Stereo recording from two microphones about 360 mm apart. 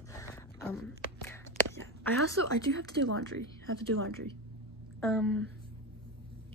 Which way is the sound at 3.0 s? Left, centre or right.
Right.